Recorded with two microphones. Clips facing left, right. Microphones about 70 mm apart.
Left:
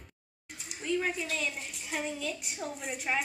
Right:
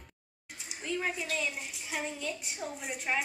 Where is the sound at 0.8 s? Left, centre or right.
Centre.